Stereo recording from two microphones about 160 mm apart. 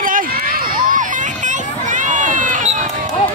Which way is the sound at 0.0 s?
60° right (ahead or behind).